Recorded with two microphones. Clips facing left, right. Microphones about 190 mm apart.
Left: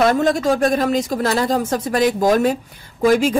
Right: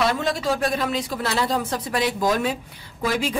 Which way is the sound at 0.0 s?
45° left (ahead or behind).